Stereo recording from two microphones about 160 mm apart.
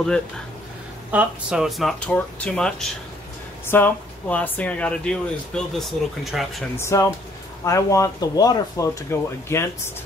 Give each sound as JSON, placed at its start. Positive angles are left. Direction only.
{"t": 1.1, "sound": "speech", "side_deg": -5}
{"t": 6.8, "sound": "speech", "side_deg": 20}